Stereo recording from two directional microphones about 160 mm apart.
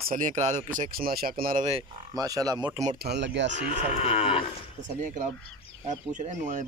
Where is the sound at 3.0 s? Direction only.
90° right.